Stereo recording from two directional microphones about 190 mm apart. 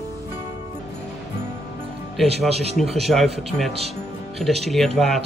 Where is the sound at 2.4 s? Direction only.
35° right (ahead or behind).